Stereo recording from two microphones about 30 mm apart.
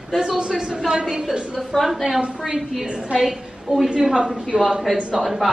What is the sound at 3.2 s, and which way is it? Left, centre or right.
Speech, centre.